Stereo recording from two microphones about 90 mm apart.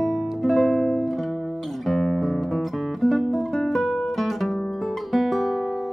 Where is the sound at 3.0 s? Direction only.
Centre (ahead or behind).